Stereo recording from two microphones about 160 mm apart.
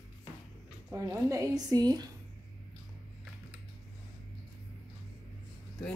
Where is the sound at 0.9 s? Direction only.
15° right (ahead or behind).